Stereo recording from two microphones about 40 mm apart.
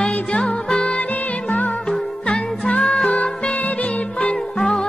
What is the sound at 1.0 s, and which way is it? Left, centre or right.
Music, left.